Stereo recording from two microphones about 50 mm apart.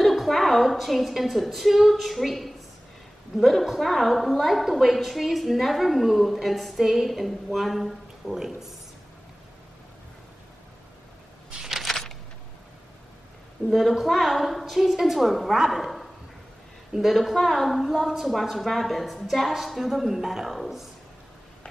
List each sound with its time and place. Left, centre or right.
0.0 s a woman's voice: centre
11.6 s a sound: centre
13.7 s a woman's voice: centre